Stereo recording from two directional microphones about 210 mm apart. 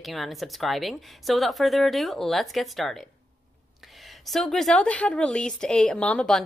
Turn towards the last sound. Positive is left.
turn(degrees=5)  # may be behind; listen again after turning